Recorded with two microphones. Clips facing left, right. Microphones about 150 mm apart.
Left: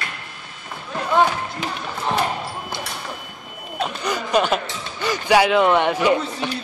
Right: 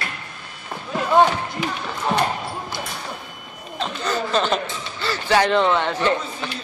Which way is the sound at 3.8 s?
15° left (ahead or behind).